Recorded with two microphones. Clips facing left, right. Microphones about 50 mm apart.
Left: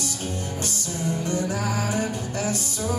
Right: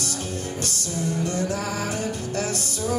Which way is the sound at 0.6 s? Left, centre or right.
Left.